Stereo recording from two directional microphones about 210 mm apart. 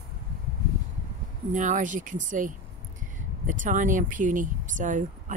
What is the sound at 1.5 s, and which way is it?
Speech, 35° right (ahead or behind).